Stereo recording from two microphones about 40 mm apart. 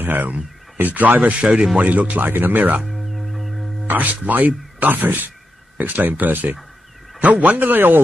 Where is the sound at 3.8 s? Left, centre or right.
Right.